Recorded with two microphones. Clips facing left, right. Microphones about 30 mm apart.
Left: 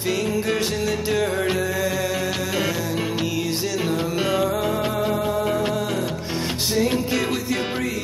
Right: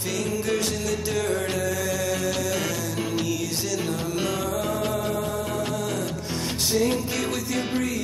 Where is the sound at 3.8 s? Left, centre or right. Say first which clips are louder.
Left 4 dB; left.